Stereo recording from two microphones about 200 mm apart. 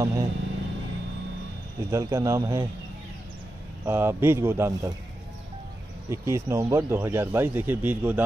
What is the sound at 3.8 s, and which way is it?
Speech, 10° right (ahead or behind).